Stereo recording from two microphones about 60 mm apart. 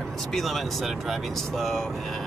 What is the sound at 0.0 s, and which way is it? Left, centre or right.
Speech, centre.